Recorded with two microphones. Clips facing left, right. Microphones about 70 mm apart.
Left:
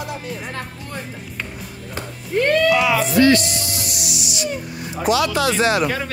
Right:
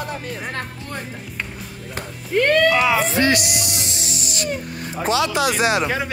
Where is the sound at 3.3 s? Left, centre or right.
Centre.